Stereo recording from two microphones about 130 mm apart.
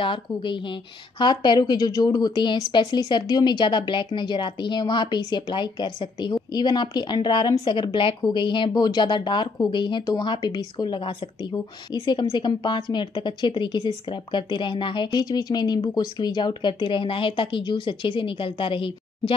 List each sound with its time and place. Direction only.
0.0 s a woman's voice: 40° left (ahead or behind)